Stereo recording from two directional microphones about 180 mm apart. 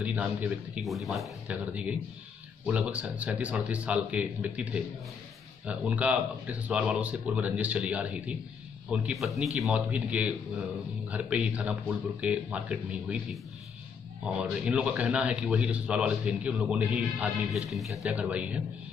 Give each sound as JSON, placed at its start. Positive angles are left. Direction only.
{"t": 0.0, "sound": "a man's voice", "side_deg": -10}